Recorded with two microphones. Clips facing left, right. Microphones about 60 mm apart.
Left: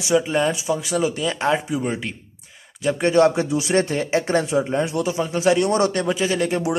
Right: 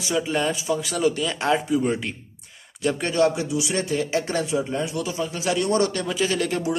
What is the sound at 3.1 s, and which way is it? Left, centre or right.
Speech, left.